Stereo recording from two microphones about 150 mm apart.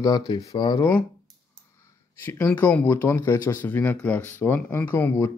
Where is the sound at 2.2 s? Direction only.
15° left (ahead or behind).